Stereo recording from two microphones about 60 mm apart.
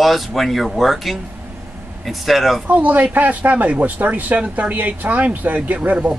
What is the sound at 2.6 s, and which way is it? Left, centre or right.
Speech, right.